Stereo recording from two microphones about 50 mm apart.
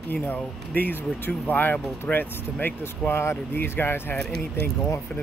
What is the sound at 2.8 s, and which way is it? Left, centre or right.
Speech, left.